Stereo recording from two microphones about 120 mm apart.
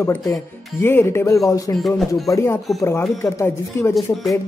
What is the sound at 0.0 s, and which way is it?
Speech, 20° left (ahead or behind).